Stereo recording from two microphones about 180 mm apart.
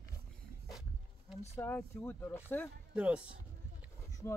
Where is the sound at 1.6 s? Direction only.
15° left (ahead or behind).